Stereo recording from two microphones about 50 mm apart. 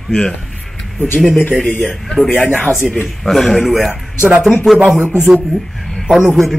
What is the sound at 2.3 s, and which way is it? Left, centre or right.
Speech, left.